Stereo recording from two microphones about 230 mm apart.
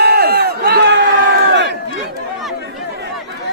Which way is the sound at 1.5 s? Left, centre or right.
Right.